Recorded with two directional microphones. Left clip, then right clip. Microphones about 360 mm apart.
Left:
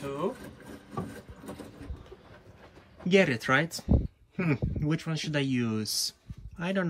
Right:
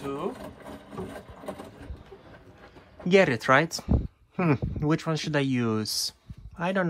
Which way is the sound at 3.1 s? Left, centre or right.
Centre.